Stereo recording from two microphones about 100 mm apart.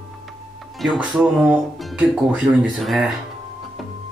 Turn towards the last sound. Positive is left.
turn(degrees=0)  # may be behind; listen again after turning